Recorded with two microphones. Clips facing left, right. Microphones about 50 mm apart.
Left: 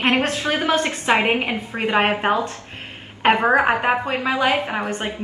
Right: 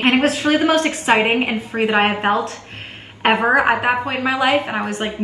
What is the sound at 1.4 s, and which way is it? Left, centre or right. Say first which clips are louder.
Speech: right 4 dB; centre.